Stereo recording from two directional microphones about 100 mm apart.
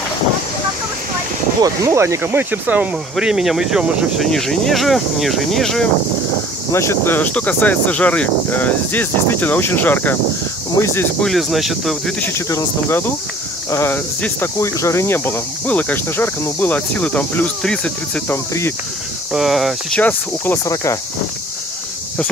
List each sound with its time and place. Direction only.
1.9 s speech: 25° right (ahead or behind)
3.2 s speech: 5° right (ahead or behind)
4.2 s speech: 5° left (ahead or behind)
6.7 s speech: 25° left (ahead or behind)
11.1 s speech: centre (ahead or behind)
12.4 s speech: 30° left (ahead or behind)
14.6 s speech: 30° left (ahead or behind); by 18.2 s 10° left (ahead or behind)
18.3 s speech: 25° left (ahead or behind)
19.3 s speech: centre (ahead or behind)
20.0 s speech: 20° left (ahead or behind)
20.6 s speech: 30° left (ahead or behind)